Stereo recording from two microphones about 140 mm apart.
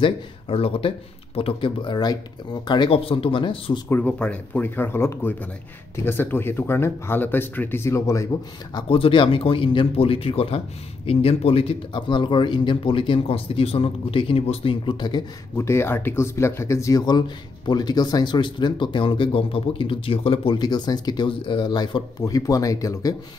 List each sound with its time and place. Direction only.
0.0 s speech: 40° left (ahead or behind)
3.9 s speech: 10° left (ahead or behind)
8.7 s speech: 40° left (ahead or behind)
15.5 s speech: 20° left (ahead or behind)